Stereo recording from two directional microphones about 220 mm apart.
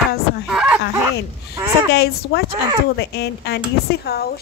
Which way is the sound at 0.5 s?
5° right (ahead or behind).